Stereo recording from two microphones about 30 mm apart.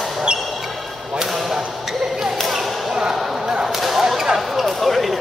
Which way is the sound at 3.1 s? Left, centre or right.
Centre.